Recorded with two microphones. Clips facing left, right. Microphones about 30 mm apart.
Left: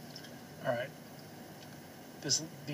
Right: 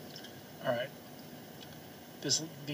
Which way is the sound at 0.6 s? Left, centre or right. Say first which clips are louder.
Right 1 dB; centre.